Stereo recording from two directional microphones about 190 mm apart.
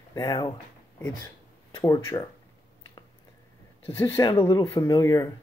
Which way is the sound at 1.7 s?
20° left (ahead or behind).